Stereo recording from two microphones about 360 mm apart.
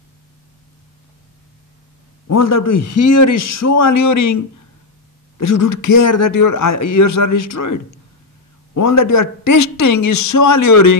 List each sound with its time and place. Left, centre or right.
2.2 s a man's voice: left
5.4 s a man's voice: left
5.7 s speech: left
5.9 s a man's voice: left
6.3 s a man's voice: left